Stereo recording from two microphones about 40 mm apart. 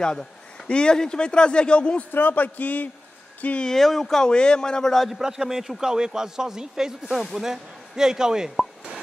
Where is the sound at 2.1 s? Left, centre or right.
Left.